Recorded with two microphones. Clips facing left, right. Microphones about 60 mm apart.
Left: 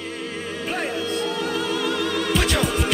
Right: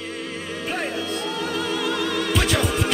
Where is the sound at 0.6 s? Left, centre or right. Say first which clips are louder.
Left 1 dB; centre.